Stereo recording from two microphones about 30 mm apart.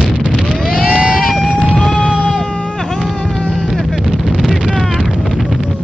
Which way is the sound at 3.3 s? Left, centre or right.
Centre.